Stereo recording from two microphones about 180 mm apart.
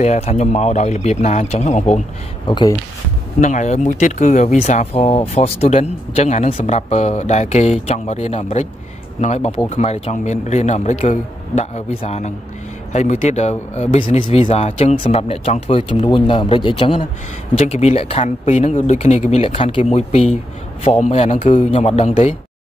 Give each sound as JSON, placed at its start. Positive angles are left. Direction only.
{"t": 0.0, "sound": "speech", "side_deg": 35}
{"t": 2.4, "sound": "speech", "side_deg": 25}
{"t": 3.3, "sound": "speech", "side_deg": 40}